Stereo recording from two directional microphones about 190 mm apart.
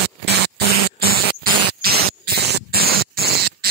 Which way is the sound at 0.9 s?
50° right (ahead or behind).